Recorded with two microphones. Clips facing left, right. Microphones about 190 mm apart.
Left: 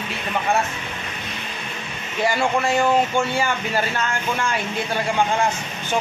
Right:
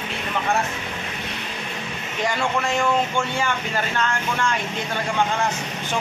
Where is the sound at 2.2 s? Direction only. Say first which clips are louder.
Left 3 dB; 5° left (ahead or behind).